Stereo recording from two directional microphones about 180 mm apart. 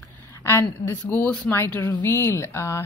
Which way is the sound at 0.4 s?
15° left (ahead or behind).